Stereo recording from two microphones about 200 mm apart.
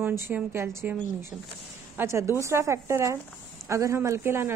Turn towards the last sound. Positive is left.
turn(degrees=-10)  # may be behind; listen again after turning